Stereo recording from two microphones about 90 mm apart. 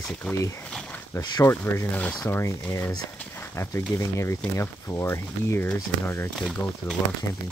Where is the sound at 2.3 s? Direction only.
30° left (ahead or behind).